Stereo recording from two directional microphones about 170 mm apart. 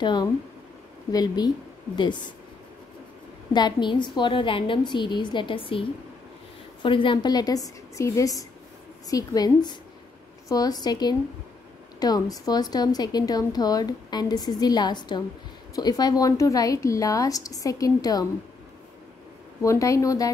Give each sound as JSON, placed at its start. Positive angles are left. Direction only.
{"t": 0.0, "sound": "a woman's voice", "side_deg": 25}
{"t": 3.5, "sound": "a woman's voice", "side_deg": 25}
{"t": 19.6, "sound": "a woman's voice", "side_deg": 20}